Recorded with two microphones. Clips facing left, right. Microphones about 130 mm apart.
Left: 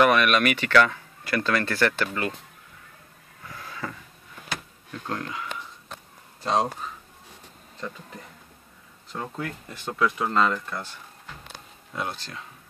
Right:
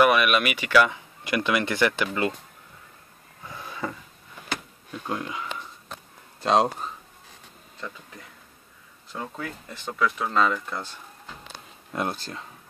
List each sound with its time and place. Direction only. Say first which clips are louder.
0.0 s speech: even; 10° right (ahead or behind)
3.4 s a sound: right 3 dB; 20° right (ahead or behind)
4.9 s speech: right 1 dB; 15° right (ahead or behind)
6.4 s speech: right 3 dB; 90° right
9.1 s speech: left 1 dB; centre (ahead or behind)
11.9 s speech: right 3 dB; 55° right (ahead or behind)